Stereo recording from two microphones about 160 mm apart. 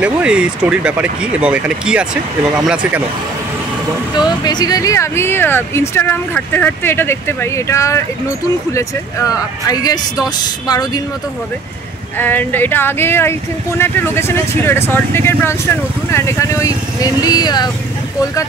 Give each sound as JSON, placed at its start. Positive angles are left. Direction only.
{"t": 0.0, "sound": "speech", "side_deg": -5}
{"t": 4.3, "sound": "speech", "side_deg": 25}
{"t": 12.2, "sound": "speech", "side_deg": 10}